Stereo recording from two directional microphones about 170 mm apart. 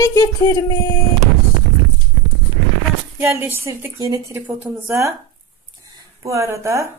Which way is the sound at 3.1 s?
10° right (ahead or behind).